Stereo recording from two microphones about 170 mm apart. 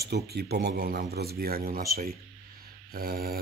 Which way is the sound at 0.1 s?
70° right (ahead or behind).